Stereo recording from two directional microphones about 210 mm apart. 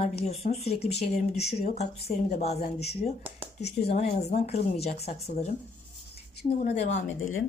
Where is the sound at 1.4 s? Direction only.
50° left (ahead or behind).